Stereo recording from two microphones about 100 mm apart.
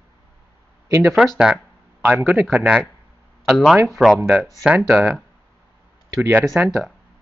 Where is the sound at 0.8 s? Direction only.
30° right (ahead or behind).